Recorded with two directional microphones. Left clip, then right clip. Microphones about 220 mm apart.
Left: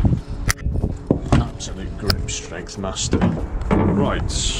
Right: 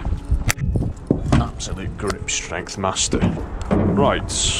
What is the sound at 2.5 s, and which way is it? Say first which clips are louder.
Speech: right 6 dB; centre (ahead or behind).